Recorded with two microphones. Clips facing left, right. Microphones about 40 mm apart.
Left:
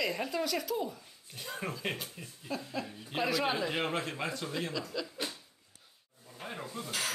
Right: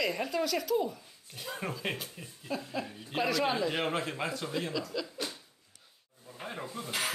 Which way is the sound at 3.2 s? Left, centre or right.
Centre.